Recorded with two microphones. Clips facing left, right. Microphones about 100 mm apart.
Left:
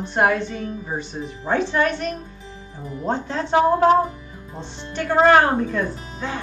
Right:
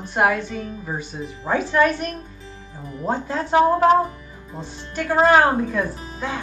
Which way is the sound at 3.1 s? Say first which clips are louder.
Even; 5° right (ahead or behind).